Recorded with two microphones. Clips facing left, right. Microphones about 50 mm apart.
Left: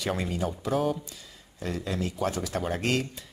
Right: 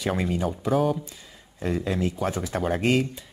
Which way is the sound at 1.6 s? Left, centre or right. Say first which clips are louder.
Right 5 dB; right.